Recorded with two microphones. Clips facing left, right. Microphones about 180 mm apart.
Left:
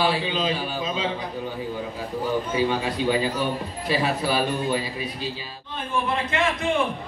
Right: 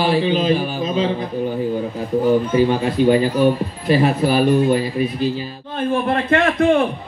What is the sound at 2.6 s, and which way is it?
A man's voice, 50° right (ahead or behind).